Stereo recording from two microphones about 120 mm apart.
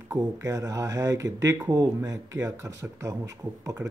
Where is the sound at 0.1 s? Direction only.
30° right (ahead or behind).